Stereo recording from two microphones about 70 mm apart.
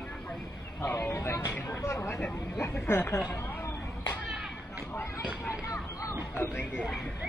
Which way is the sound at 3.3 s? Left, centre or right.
Left.